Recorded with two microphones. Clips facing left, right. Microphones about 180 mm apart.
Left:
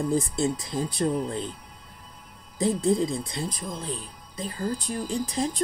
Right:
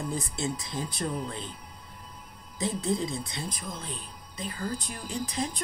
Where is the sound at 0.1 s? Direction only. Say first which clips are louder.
Left 7 dB; 35° left (ahead or behind).